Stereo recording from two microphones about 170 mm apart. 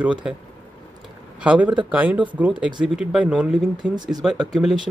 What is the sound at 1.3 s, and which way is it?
Speech, 5° right (ahead or behind).